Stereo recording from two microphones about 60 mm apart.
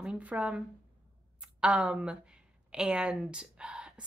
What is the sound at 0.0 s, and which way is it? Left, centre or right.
Speech, centre.